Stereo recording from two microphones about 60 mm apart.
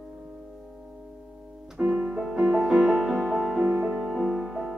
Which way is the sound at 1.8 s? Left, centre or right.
Centre.